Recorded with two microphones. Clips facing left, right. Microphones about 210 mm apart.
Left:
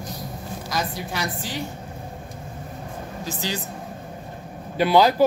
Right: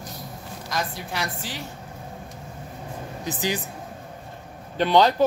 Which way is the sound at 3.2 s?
15° right (ahead or behind).